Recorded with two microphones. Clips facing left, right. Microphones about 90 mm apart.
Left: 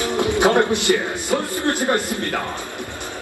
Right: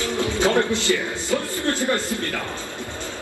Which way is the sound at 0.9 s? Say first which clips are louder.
Left 3 dB; 50° left (ahead or behind).